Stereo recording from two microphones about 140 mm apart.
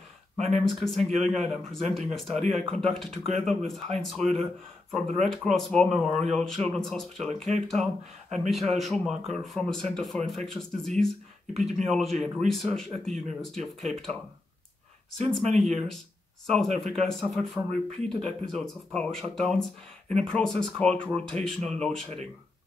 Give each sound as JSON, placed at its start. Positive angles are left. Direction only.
{"t": 0.5, "sound": "speech", "side_deg": 0}
{"t": 15.1, "sound": "speech", "side_deg": 5}